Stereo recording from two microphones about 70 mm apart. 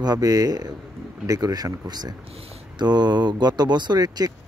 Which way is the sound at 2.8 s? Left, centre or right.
Right.